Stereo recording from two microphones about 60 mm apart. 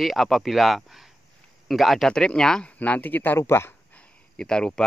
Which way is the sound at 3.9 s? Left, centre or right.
Centre.